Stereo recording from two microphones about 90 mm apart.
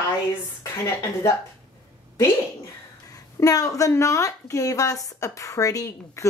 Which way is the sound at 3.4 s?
40° left (ahead or behind).